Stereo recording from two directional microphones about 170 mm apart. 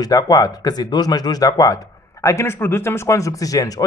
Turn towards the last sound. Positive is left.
turn(degrees=20)  # may be behind; listen again after turning